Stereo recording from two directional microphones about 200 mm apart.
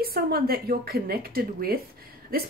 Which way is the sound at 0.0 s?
50° right (ahead or behind).